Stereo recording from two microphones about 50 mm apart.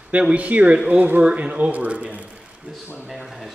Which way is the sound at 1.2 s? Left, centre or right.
Right.